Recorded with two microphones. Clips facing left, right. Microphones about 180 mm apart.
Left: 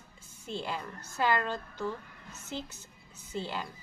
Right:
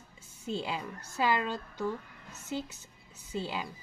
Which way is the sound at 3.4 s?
10° right (ahead or behind).